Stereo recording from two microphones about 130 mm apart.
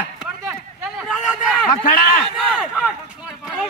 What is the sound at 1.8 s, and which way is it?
Speech, 90° left.